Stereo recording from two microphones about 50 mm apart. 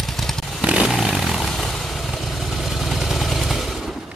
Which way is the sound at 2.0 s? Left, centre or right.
Centre.